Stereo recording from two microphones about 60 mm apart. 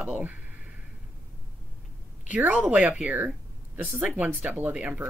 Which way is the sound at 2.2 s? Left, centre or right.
Right.